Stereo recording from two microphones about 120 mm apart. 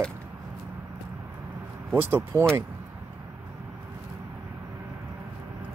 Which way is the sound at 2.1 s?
20° right (ahead or behind).